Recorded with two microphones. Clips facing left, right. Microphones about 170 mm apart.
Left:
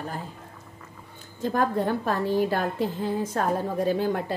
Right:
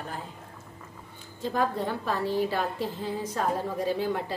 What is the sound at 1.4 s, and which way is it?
A woman's voice, 50° left (ahead or behind).